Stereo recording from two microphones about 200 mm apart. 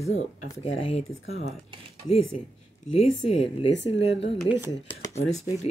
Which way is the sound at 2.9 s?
30° left (ahead or behind).